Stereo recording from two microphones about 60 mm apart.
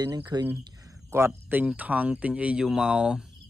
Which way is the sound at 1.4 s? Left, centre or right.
Right.